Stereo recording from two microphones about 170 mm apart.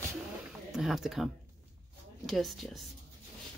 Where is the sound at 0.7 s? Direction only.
Centre (ahead or behind).